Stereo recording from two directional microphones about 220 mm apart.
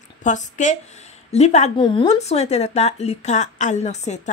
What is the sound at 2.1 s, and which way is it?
A woman's voice, 30° left (ahead or behind).